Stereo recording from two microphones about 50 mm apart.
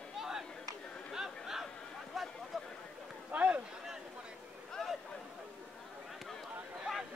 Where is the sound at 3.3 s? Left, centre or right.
Right.